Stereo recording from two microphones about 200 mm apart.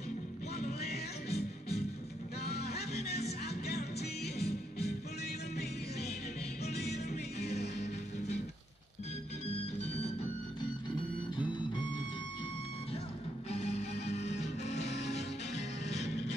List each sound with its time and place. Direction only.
1.3 s music: 35° left (ahead or behind)
2.4 s music: 55° left (ahead or behind)
7.5 s music: 55° left (ahead or behind)
13.5 s music: 30° left (ahead or behind)
14.9 s music: 60° left (ahead or behind)
15.1 s music: 35° left (ahead or behind)